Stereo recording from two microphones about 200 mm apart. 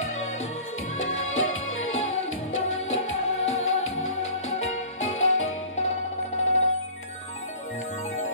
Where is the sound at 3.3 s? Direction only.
75° left (ahead or behind).